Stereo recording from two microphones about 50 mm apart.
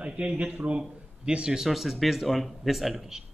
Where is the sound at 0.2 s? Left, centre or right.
Right; by 3.3 s centre.